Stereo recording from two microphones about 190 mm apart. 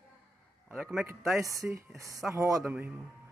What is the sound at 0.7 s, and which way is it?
A man's voice, 5° right (ahead or behind).